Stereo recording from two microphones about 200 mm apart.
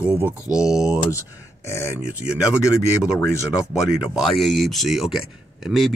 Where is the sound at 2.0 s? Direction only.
5° right (ahead or behind).